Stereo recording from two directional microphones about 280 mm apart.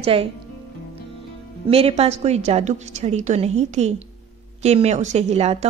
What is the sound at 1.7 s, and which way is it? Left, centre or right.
A woman's voice, right.